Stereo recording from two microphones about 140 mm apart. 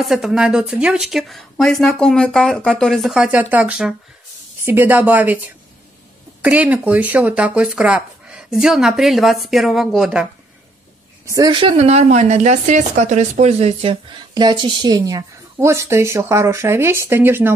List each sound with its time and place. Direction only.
0.0 s speech: centre (ahead or behind)
6.4 s speech: 10° right (ahead or behind)
11.2 s a woman's voice: 30° right (ahead or behind)
11.7 s speech: 50° right (ahead or behind)
14.3 s speech: 35° right (ahead or behind); by 17.5 s 15° right (ahead or behind)